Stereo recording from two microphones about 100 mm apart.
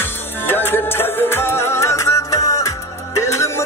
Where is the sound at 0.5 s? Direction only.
20° left (ahead or behind).